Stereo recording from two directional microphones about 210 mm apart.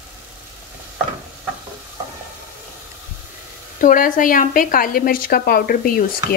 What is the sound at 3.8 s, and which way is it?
A woman's voice, 40° left (ahead or behind).